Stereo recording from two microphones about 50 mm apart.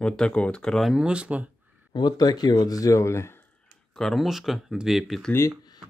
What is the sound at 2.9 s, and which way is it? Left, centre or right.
Speech, left.